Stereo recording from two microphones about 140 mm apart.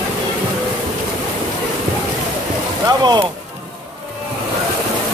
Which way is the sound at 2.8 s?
30° right (ahead or behind).